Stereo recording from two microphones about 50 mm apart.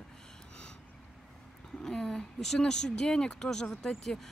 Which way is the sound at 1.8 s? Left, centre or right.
Centre.